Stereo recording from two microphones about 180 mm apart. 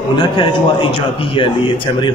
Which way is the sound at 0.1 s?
25° left (ahead or behind).